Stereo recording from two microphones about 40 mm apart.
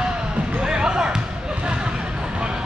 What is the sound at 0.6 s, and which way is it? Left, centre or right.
Basketball bounce, centre.